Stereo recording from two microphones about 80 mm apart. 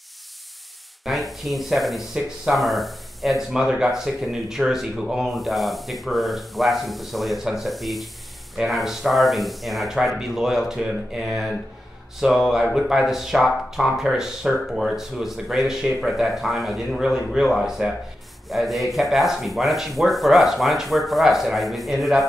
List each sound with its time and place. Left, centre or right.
1.0 s speech: centre